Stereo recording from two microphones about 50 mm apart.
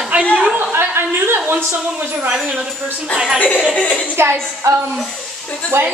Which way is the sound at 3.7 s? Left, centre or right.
Left.